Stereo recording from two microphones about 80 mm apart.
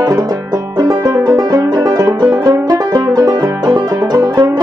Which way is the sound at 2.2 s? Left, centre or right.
Right.